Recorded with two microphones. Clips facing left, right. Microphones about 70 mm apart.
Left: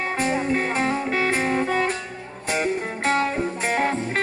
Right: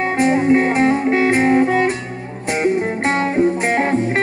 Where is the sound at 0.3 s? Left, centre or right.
Right.